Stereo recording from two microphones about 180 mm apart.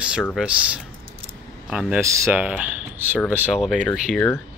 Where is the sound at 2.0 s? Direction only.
15° right (ahead or behind); by 4.3 s centre (ahead or behind).